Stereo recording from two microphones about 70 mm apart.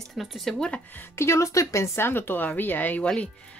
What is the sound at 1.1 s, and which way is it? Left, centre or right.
Speech, left.